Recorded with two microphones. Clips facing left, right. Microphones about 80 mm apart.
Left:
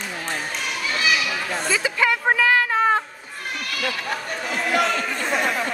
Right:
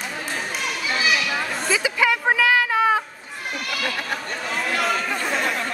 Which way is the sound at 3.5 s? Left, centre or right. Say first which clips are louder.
Right 1 dB; centre.